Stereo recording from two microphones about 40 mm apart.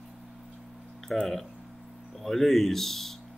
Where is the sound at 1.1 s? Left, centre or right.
Centre.